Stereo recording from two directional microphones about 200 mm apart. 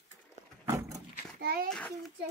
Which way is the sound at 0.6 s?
20° right (ahead or behind).